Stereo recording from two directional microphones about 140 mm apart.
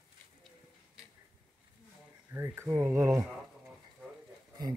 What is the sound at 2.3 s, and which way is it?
Speech, 15° right (ahead or behind).